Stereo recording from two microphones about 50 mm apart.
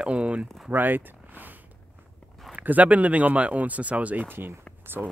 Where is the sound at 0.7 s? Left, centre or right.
Right.